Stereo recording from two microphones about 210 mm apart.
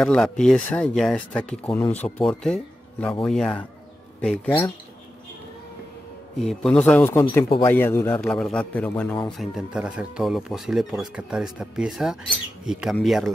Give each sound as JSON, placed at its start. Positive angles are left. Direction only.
{"t": 0.0, "sound": "a man's voice", "side_deg": 5}
{"t": 6.4, "sound": "a man's voice", "side_deg": 5}
{"t": 9.4, "sound": "speech", "side_deg": -5}